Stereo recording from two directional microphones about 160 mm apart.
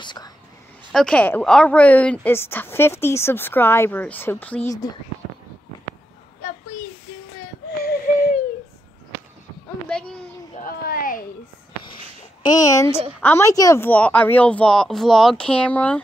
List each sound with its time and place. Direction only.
0.0 s a woman's voice: 30° left (ahead or behind)
0.9 s speech: 5° left (ahead or behind)
7.8 s wheeze: 75° left (ahead or behind)
9.8 s a sound: 5° left (ahead or behind)
10.6 s a sound: 65° left (ahead or behind)
12.4 s a woman's voice: 20° left (ahead or behind)